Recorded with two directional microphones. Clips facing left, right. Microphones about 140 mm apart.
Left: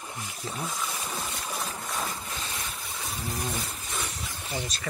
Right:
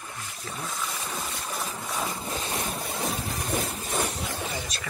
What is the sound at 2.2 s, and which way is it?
Boat, 30° right (ahead or behind).